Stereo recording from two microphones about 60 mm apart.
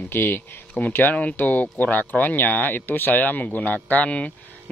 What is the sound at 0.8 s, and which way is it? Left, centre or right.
Speech, left.